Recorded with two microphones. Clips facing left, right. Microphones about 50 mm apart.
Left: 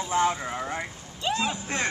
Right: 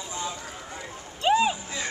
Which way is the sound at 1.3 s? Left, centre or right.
Centre.